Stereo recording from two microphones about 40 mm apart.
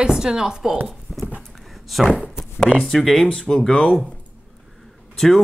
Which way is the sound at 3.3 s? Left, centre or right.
Centre.